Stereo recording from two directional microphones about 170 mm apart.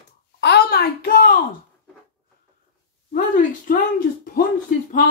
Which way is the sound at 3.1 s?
55° left (ahead or behind).